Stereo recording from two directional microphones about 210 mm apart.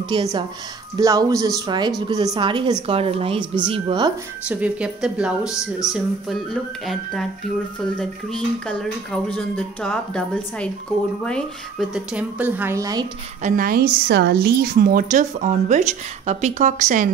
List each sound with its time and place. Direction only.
0.1 s a woman's voice: 20° right (ahead or behind)
4.5 s speech: 5° right (ahead or behind)
13.4 s a woman's voice: 40° right (ahead or behind)